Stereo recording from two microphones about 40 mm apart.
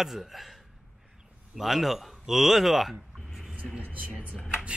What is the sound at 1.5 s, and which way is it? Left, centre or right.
Speech, centre.